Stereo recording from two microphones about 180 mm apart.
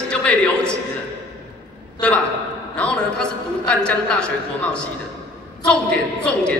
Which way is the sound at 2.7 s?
5° left (ahead or behind).